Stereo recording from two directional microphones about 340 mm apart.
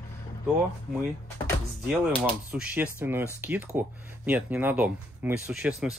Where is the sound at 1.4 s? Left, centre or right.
Centre.